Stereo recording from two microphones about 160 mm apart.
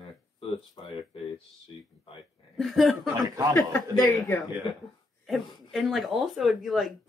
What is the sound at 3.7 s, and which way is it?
Speech, 20° left (ahead or behind).